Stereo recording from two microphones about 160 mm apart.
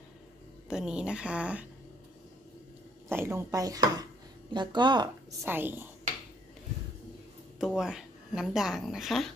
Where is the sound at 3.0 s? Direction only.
15° right (ahead or behind).